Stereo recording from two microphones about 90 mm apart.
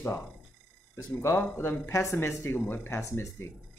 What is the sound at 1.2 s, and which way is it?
A man's voice, 30° left (ahead or behind).